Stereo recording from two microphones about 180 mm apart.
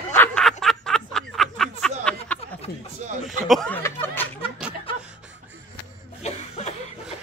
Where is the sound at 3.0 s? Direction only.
40° right (ahead or behind).